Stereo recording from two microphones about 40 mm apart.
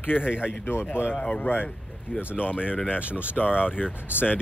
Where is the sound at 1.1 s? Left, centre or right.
Left.